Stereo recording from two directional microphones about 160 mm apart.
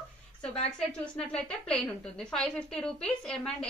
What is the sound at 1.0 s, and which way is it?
A woman's voice, 5° left (ahead or behind).